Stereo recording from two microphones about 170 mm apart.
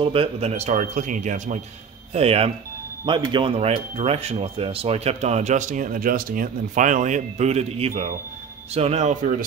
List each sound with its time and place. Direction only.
0.0 s speech: 30° right (ahead or behind); by 9.5 s 50° right (ahead or behind)